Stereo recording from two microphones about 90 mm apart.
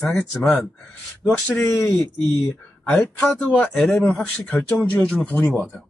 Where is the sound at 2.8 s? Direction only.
10° left (ahead or behind).